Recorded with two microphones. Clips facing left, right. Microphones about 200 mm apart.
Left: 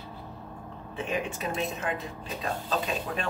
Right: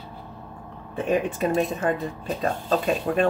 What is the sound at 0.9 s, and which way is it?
Speech, 50° right (ahead or behind).